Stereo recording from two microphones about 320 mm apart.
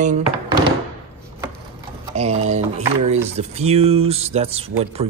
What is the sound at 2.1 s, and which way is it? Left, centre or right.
Speech, right.